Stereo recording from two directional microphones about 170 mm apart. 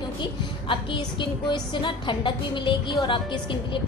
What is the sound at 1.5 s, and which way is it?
A woman's voice, 25° left (ahead or behind).